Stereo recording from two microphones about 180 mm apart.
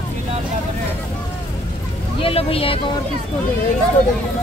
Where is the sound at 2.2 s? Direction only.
30° left (ahead or behind).